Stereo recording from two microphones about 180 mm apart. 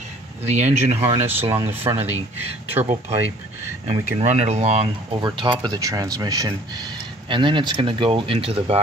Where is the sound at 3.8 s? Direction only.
40° right (ahead or behind).